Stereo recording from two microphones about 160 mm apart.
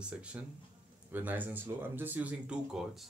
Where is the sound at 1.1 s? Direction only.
10° right (ahead or behind).